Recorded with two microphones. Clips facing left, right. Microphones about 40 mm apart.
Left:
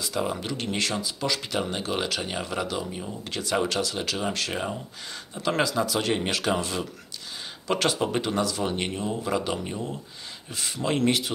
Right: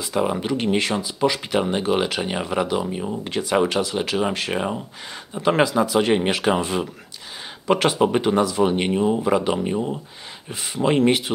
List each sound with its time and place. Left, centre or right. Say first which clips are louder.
0.0 s speech: right 6 dB; right